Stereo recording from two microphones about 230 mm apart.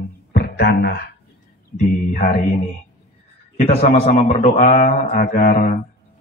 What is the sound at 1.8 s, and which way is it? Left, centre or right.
Speech, left.